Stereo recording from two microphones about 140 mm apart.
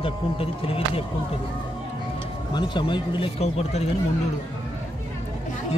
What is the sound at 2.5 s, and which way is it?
Speech, 35° left (ahead or behind).